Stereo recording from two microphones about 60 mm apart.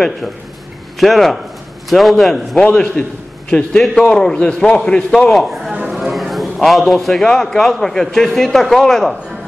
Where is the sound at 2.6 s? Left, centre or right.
Centre.